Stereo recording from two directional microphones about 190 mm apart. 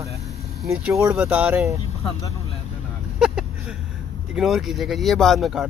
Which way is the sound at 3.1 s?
Centre (ahead or behind).